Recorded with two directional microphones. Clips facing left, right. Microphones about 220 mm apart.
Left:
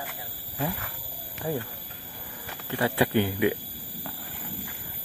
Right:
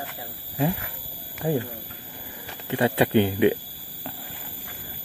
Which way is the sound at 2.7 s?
25° right (ahead or behind).